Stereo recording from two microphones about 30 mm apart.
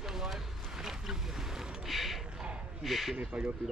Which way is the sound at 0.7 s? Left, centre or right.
Centre.